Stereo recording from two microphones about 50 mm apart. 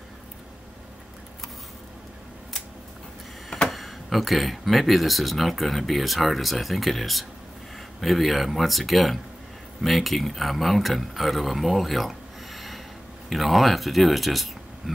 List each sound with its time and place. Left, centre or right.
3.6 s speech: centre